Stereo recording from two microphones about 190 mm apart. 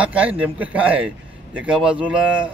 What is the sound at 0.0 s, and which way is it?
A man's voice, 5° right (ahead or behind).